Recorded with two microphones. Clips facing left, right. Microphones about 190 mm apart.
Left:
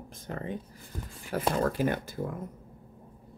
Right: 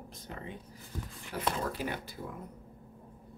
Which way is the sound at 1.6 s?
50° left (ahead or behind).